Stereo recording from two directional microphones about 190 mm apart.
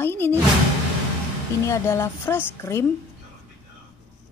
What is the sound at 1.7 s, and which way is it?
Speech, 15° left (ahead or behind).